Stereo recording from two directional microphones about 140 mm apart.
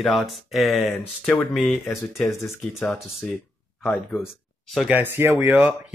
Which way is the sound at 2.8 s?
5° left (ahead or behind).